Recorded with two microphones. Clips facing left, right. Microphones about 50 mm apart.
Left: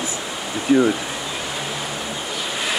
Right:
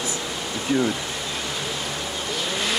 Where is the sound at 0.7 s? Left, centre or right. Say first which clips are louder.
Left 6 dB; left.